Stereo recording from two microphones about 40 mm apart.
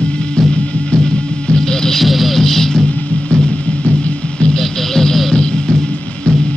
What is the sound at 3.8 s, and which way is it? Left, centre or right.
Music, left.